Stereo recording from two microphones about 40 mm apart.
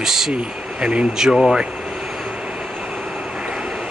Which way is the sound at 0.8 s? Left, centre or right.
Right.